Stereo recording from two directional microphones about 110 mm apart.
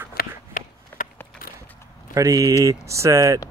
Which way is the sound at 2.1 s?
30° right (ahead or behind).